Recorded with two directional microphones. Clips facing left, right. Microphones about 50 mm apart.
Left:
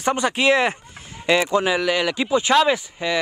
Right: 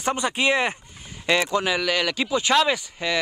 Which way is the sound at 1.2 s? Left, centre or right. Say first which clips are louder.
Left 3 dB; centre.